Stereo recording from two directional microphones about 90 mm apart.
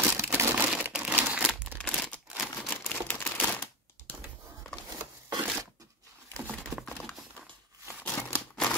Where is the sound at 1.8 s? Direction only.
10° left (ahead or behind).